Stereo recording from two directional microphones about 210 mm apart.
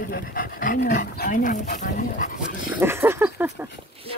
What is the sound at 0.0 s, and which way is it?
Speech, 45° left (ahead or behind).